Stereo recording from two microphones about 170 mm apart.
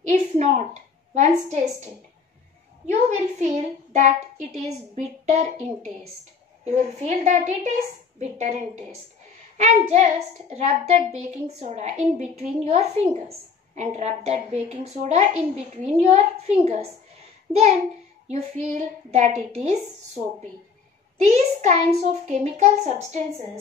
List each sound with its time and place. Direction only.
0.1 s a sound: 40° right (ahead or behind)
1.1 s a child's voice: 45° right (ahead or behind)
2.9 s a child's voice: 45° right (ahead or behind)
21.3 s a child's voice: 45° right (ahead or behind)